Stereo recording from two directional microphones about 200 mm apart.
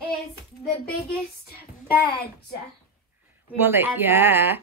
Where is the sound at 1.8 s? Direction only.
50° left (ahead or behind).